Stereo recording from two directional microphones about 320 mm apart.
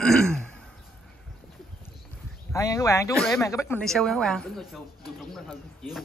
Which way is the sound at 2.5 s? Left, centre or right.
Centre.